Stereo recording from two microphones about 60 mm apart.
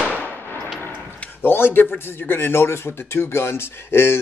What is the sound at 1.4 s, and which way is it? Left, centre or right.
Speech, left.